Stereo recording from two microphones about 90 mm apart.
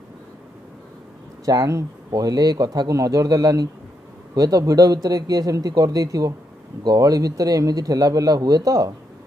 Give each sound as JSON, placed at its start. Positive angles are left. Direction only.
{"t": 1.4, "sound": "a man's voice", "side_deg": -40}